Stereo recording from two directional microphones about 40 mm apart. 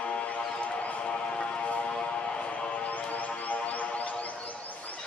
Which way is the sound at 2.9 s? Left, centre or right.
Left.